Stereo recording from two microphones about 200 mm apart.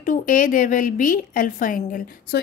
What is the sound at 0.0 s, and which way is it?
A woman's voice, 40° left (ahead or behind).